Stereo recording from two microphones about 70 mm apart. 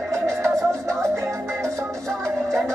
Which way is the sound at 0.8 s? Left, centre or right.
Right.